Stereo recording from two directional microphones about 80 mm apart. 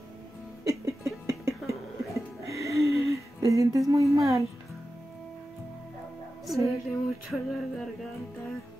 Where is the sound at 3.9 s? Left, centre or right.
Right.